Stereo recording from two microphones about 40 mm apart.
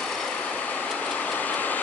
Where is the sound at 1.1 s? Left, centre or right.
Left.